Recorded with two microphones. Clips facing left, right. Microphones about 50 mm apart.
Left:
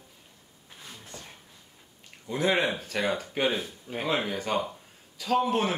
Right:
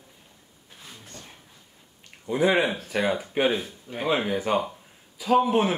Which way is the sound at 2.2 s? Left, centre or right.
Centre.